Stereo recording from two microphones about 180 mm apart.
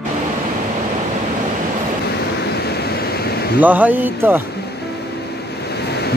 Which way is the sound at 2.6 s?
60° left (ahead or behind).